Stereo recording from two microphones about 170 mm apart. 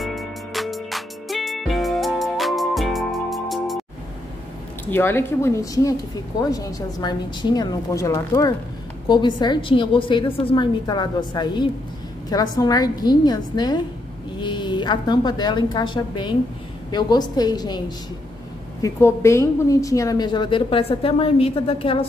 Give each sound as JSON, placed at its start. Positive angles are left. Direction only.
{"t": 0.0, "sound": "music", "side_deg": 0}
{"t": 4.9, "sound": "a woman's voice", "side_deg": 15}